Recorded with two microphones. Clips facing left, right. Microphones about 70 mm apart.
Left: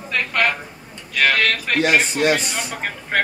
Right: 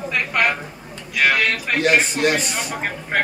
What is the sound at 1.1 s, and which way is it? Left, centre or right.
A man's voice, centre.